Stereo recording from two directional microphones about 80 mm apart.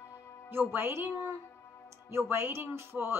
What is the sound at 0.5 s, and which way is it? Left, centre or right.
A woman's voice, right.